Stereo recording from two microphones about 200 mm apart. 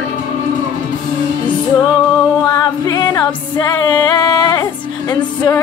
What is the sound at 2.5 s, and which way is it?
Music, 20° left (ahead or behind).